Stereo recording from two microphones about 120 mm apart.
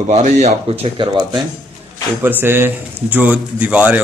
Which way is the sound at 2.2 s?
15° right (ahead or behind).